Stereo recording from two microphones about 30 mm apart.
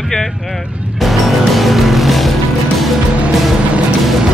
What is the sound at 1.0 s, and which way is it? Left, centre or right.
Music, centre.